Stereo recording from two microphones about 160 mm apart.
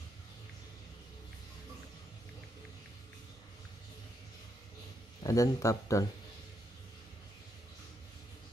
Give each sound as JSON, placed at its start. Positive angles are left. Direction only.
{"t": 5.2, "sound": "speech", "side_deg": 20}